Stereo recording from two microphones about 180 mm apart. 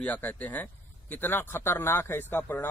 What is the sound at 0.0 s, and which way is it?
A man's voice, 10° left (ahead or behind).